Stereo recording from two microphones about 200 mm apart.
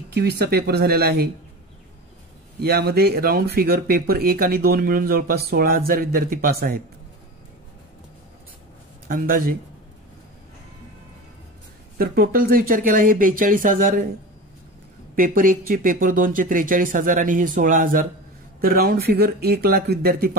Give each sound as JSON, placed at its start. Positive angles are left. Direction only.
{"t": 0.1, "sound": "speech", "side_deg": -55}
{"t": 2.6, "sound": "speech", "side_deg": -50}
{"t": 9.0, "sound": "speech", "side_deg": -45}
{"t": 12.0, "sound": "speech", "side_deg": -50}
{"t": 15.1, "sound": "speech", "side_deg": -45}